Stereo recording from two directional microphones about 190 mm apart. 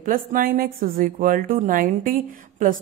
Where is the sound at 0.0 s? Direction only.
45° right (ahead or behind).